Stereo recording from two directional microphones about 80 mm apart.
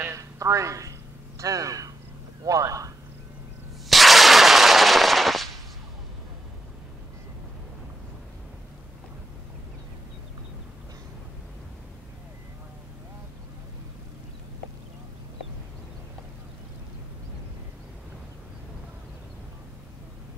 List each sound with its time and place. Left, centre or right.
0.0 s a sound: right
1.4 s speech: right
3.9 s gunshot: centre